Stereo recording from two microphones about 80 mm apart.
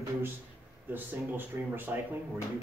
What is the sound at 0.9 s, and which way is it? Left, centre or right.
A man's voice, right.